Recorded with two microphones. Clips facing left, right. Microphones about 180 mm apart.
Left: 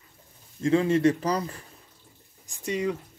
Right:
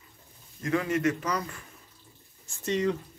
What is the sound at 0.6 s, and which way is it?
Speech, 25° left (ahead or behind).